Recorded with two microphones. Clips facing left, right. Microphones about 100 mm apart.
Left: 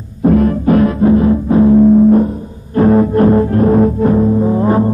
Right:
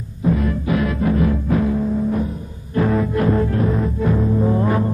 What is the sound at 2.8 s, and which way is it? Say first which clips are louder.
Music: left 9 dB; 35° left (ahead or behind).